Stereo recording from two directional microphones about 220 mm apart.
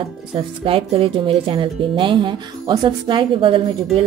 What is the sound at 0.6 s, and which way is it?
Speech, 25° right (ahead or behind).